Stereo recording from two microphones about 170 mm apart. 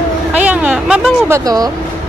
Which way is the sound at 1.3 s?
20° right (ahead or behind).